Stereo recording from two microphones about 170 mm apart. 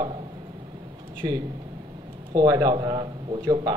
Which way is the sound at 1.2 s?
20° right (ahead or behind).